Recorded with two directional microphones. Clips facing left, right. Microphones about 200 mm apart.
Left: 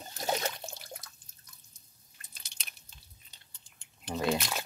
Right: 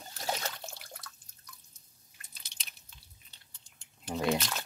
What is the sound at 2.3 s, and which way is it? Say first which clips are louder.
Chewing: left 2 dB; 55° left (ahead or behind).